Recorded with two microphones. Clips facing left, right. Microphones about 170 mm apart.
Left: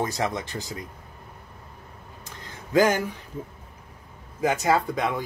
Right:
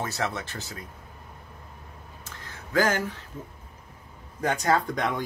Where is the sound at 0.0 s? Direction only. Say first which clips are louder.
Left 3 dB; 15° left (ahead or behind).